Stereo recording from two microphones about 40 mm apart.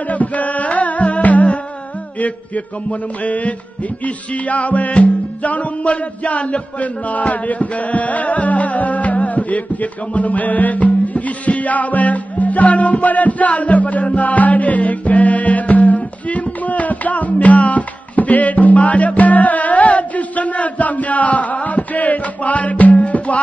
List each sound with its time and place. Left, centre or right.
0.1 s music: left
2.1 s a sound: left
4.0 s music: left